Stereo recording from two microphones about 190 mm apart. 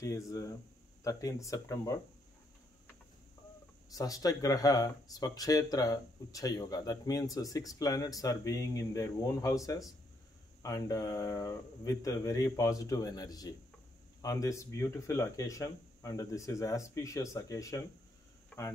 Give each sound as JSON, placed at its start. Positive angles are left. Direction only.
{"t": 0.0, "sound": "speech", "side_deg": 15}
{"t": 3.9, "sound": "speech", "side_deg": 20}